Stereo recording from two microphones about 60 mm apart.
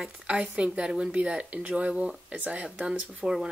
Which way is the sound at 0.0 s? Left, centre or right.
Centre.